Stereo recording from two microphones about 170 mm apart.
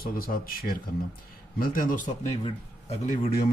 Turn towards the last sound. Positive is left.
turn(degrees=45)  # may be behind; listen again after turning